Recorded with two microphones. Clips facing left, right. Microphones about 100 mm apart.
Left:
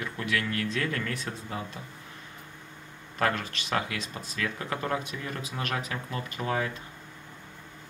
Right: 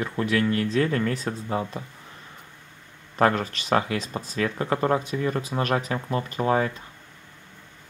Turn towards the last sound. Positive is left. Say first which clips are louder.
# right 7 dB
turn(degrees=-35)  # may be behind; listen again after turning